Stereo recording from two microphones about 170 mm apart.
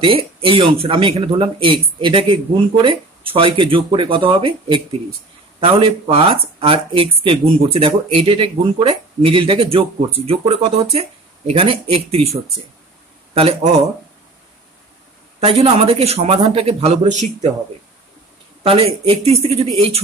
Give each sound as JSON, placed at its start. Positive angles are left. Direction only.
{"t": 0.0, "sound": "speech", "side_deg": -30}
{"t": 15.4, "sound": "speech", "side_deg": -35}
{"t": 18.6, "sound": "speech", "side_deg": -35}